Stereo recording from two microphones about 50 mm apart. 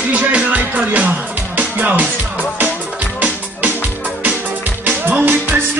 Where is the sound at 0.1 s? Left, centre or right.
Right.